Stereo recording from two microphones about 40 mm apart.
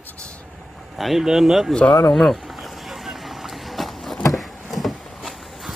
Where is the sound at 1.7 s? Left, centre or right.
Left.